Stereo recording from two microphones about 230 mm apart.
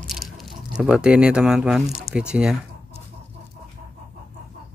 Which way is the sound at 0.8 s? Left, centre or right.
Centre.